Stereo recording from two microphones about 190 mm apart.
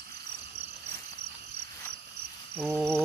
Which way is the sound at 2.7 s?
10° right (ahead or behind).